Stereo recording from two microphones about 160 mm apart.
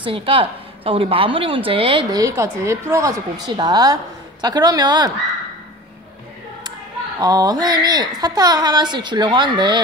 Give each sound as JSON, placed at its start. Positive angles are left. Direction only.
{"t": 0.0, "sound": "a woman's voice", "side_deg": -35}
{"t": 7.2, "sound": "a woman's voice", "side_deg": -25}